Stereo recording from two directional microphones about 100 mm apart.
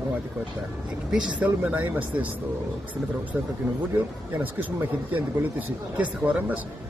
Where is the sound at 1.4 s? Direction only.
15° right (ahead or behind).